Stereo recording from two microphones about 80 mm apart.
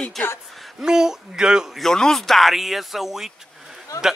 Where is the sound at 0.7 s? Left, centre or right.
Centre.